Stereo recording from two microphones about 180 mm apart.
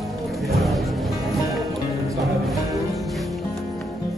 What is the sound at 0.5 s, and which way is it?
Music, centre (ahead or behind).